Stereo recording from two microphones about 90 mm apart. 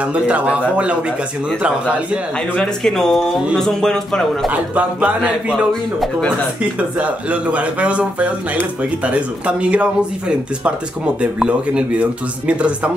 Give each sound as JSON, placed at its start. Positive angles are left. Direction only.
{"t": 0.0, "sound": "speech", "side_deg": -15}
{"t": 2.5, "sound": "speech", "side_deg": 5}
{"t": 4.5, "sound": "speech", "side_deg": -15}
{"t": 6.8, "sound": "speech", "side_deg": -15}